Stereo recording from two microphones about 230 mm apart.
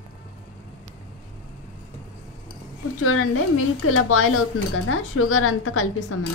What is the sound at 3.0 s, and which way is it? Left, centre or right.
A woman's voice, left.